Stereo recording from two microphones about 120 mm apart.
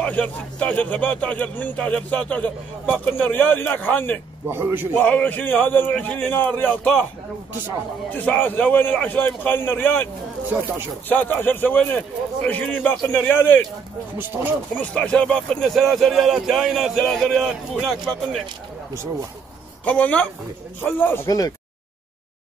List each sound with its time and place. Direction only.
0.0 s speech: 10° left (ahead or behind)
4.5 s a man's voice: 20° right (ahead or behind)
4.9 s speech: 15° left (ahead or behind)
8.1 s speech: 15° left (ahead or behind)
11.1 s speech: 15° left (ahead or behind)
14.1 s speech: 15° right (ahead or behind)
14.7 s speech: 10° left (ahead or behind)
19.8 s speech: 10° left (ahead or behind)
21.3 s speech: 30° left (ahead or behind)